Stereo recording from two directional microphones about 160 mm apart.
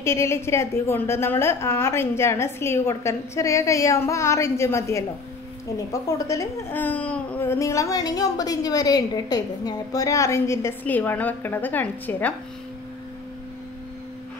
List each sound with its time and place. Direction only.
0.0 s a woman's voice: 15° left (ahead or behind)
6.1 s a woman's voice: 20° left (ahead or behind)